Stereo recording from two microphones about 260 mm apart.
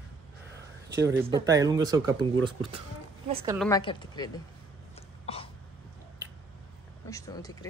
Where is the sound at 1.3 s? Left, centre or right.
Centre.